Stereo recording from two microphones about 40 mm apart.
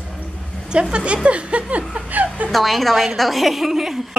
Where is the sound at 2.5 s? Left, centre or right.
Centre.